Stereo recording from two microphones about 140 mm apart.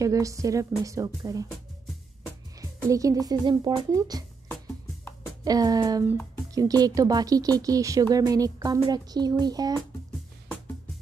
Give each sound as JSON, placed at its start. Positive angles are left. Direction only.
{"t": 0.0, "sound": "speech", "side_deg": -25}
{"t": 2.5, "sound": "speech", "side_deg": -25}
{"t": 5.4, "sound": "speech", "side_deg": -25}